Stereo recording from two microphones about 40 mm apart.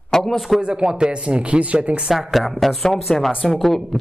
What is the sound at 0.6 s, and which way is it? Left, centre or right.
Speech, right.